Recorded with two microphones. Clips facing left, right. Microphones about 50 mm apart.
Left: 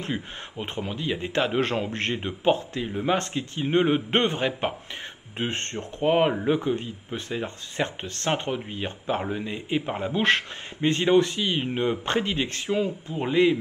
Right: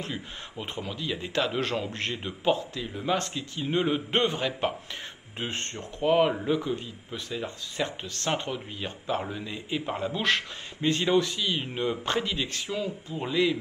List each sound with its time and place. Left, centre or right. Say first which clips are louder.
0.0 s speech: left 4 dB; left
2.1 s speech: left 3 dB; left
6.1 s speech: left 1 dB; left